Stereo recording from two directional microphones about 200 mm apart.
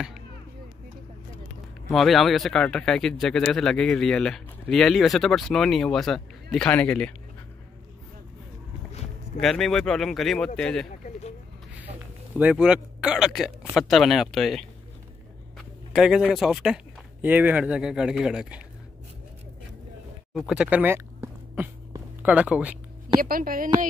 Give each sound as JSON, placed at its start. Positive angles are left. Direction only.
{"t": 1.9, "sound": "speech", "side_deg": 0}
{"t": 9.4, "sound": "speech", "side_deg": 0}
{"t": 12.4, "sound": "speech", "side_deg": -5}
{"t": 20.3, "sound": "a sound", "side_deg": -5}
{"t": 23.2, "sound": "a woman's voice", "side_deg": -45}